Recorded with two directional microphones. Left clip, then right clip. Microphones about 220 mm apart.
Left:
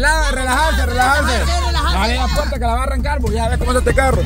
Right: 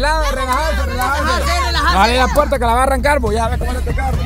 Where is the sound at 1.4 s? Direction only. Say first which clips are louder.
Right 3 dB; 50° right (ahead or behind).